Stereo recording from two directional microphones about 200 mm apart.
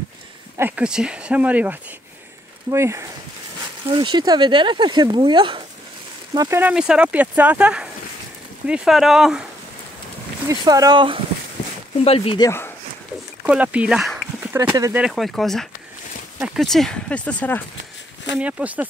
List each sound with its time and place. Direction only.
0.6 s speech: 5° right (ahead or behind)
10.5 s speech: 20° right (ahead or behind)
12.0 s speech: 30° left (ahead or behind)
12.4 s speech: 10° left (ahead or behind)
13.5 s speech: 5° right (ahead or behind)
18.3 s speech: 5° right (ahead or behind)